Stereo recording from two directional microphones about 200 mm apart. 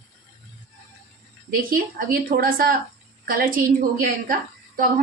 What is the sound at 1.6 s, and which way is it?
A woman's voice, 45° right (ahead or behind).